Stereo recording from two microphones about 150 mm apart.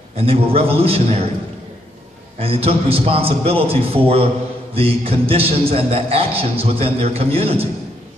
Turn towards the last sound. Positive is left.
turn(degrees=-40)  # may be behind; listen again after turning